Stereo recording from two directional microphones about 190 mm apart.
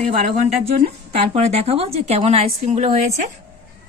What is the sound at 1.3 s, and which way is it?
A woman's voice, 35° right (ahead or behind).